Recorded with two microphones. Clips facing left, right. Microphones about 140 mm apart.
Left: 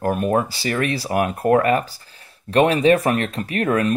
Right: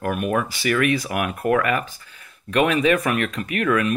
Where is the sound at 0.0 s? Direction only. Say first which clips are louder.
Left 3 dB; 30° left (ahead or behind).